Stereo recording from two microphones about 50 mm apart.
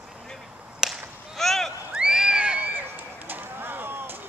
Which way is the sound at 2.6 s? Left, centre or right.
Right.